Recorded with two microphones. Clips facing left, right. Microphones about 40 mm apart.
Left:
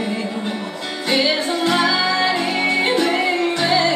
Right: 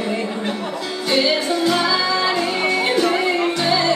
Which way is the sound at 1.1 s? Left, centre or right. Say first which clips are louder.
Even; centre.